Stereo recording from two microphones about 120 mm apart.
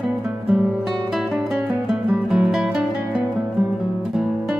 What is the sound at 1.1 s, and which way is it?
Music, centre (ahead or behind).